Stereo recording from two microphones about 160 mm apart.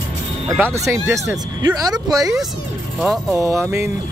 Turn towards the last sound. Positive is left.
turn(degrees=-10)  # may be behind; listen again after turning